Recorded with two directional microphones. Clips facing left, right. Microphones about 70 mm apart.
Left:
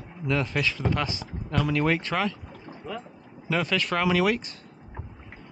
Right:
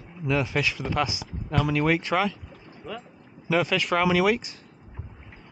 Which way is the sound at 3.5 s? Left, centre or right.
Centre.